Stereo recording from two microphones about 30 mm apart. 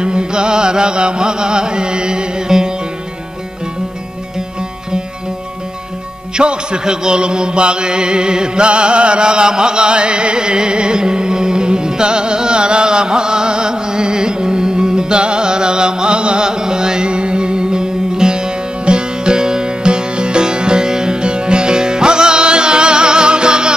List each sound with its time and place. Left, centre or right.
0.0 s music: right
6.3 s music: right
16.4 s music: right